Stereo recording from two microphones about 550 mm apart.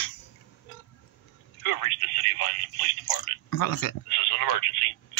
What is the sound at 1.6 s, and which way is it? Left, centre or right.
Telephone, left.